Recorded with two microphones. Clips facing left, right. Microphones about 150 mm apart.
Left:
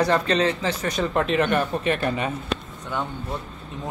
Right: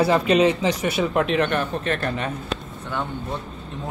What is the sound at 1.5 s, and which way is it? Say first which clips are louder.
Speech: left 1 dB; 10° left (ahead or behind).